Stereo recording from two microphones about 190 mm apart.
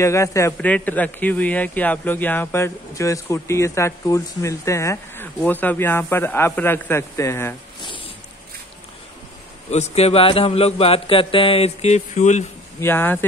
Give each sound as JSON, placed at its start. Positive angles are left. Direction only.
{"t": 0.0, "sound": "speech", "side_deg": 15}
{"t": 9.7, "sound": "speech", "side_deg": 35}
{"t": 12.8, "sound": "speech", "side_deg": 10}